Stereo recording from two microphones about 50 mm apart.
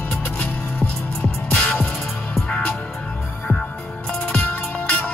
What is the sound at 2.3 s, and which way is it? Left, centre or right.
Music, centre.